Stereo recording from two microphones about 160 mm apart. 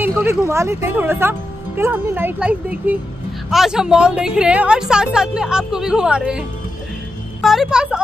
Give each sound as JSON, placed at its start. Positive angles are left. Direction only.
{"t": 0.0, "sound": "a woman's voice", "side_deg": -15}
{"t": 7.4, "sound": "a woman's voice", "side_deg": 0}